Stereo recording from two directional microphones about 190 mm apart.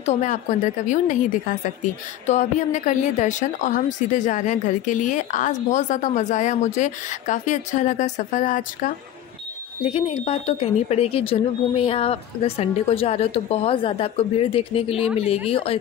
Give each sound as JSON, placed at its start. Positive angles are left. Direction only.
{"t": 0.0, "sound": "a woman's voice", "side_deg": 40}
{"t": 9.8, "sound": "a woman's voice", "side_deg": 30}